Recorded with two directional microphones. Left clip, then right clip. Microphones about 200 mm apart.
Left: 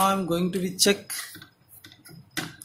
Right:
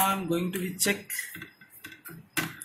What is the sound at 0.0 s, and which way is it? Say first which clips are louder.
Speech: left 4 dB; 40° left (ahead or behind).